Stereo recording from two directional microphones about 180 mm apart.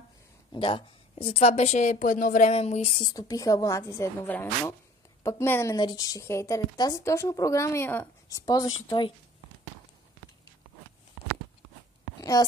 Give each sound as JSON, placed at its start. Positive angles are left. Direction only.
{"t": 0.5, "sound": "speech", "side_deg": 30}
{"t": 3.1, "sound": "a woman's voice", "side_deg": 20}
{"t": 12.2, "sound": "a sound", "side_deg": 20}